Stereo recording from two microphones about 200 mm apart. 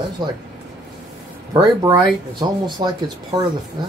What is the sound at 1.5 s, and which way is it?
Speech, 20° right (ahead or behind).